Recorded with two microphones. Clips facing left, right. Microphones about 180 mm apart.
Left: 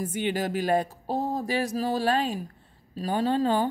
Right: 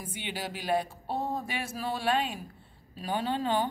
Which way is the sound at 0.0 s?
45° left (ahead or behind).